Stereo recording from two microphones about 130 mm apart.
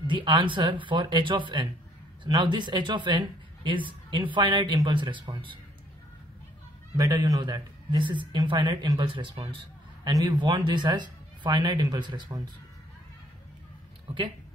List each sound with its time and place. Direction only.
0.0 s speech: 40° right (ahead or behind)
7.0 s speech: 25° right (ahead or behind)